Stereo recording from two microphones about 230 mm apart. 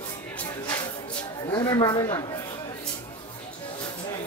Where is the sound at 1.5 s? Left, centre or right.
Centre.